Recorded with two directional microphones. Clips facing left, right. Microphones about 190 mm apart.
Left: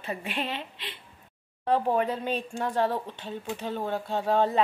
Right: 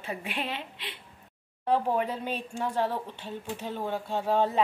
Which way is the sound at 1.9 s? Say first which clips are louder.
Left 3 dB; 10° right (ahead or behind).